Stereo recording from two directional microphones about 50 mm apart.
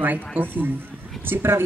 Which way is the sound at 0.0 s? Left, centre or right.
Right.